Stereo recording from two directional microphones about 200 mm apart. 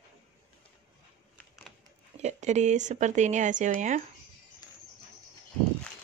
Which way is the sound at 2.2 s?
35° right (ahead or behind).